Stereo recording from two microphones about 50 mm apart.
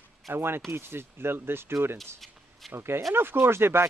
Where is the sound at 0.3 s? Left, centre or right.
Right.